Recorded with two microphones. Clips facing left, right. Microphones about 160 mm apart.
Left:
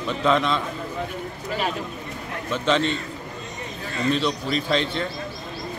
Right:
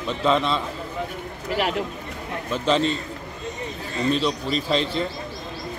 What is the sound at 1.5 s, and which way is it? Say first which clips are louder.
Speech: right 3 dB; 80° right.